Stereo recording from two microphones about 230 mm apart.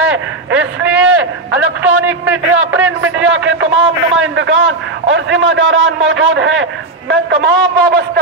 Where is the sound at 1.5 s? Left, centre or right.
Centre.